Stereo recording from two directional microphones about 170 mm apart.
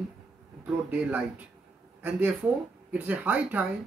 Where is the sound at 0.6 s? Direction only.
5° right (ahead or behind).